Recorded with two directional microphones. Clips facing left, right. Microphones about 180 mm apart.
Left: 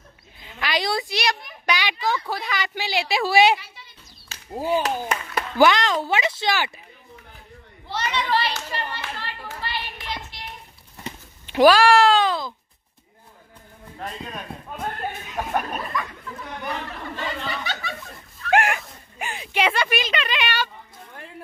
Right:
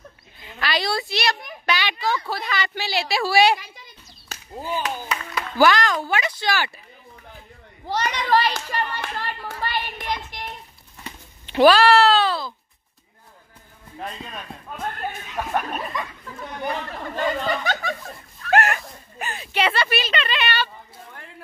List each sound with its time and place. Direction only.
0.6 s a woman's voice: 15° left (ahead or behind)
3.5 s a sound: 45° right (ahead or behind)
4.6 s a woman's voice: 5° left (ahead or behind)
4.8 s speech: 50° left (ahead or behind)
5.6 s speech: 20° left (ahead or behind)
7.8 s clapping: 45° right (ahead or behind)
11.4 s a sound: 10° left (ahead or behind)
16.0 s speech: 25° right (ahead or behind)
17.1 s snicker: 45° right (ahead or behind)
18.5 s a sound: 10° left (ahead or behind)